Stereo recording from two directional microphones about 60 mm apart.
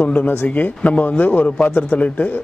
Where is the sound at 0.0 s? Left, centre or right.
Left.